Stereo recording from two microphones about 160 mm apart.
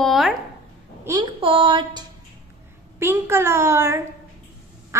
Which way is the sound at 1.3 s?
35° right (ahead or behind).